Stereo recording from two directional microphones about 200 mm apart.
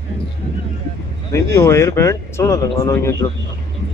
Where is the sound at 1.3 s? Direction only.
15° left (ahead or behind).